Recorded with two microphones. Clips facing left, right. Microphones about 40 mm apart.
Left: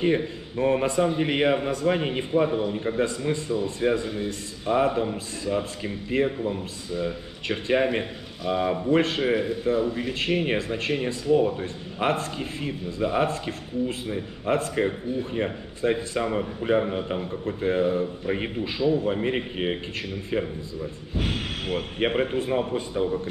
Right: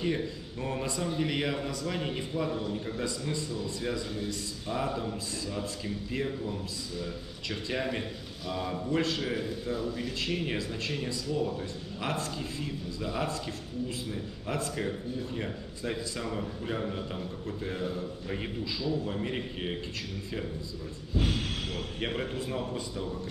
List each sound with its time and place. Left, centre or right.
0.0 s a man's voice: left
21.2 s a man's voice: left